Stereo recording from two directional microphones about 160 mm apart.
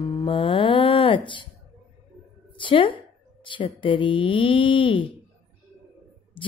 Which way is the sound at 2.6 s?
30° left (ahead or behind).